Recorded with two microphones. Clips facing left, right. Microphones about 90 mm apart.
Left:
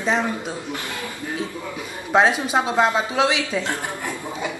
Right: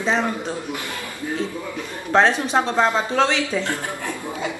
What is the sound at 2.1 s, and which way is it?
Speech, 10° left (ahead or behind).